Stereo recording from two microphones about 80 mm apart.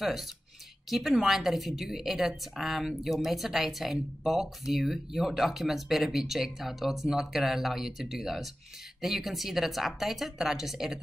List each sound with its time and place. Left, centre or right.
0.0 s speech: centre